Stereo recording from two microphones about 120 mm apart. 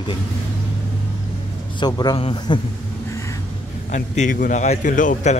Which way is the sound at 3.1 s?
25° left (ahead or behind).